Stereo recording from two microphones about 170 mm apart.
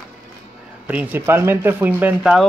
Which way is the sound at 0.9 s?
10° right (ahead or behind).